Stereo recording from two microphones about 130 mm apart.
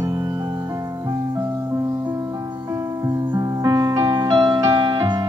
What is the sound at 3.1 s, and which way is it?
Music, 25° right (ahead or behind).